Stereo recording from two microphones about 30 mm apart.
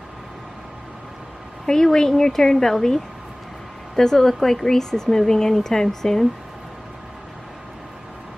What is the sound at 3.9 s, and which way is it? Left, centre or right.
Speech, centre.